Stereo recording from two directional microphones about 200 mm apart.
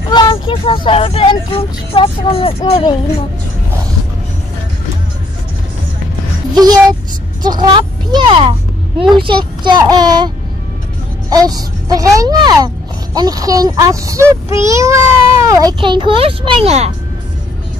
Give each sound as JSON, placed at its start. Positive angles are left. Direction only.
{"t": 0.1, "sound": "speech", "side_deg": 25}
{"t": 6.5, "sound": "a child's voice", "side_deg": -20}